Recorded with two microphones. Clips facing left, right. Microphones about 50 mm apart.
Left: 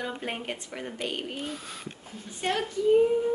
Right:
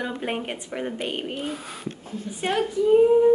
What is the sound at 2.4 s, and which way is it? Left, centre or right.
Speech, centre.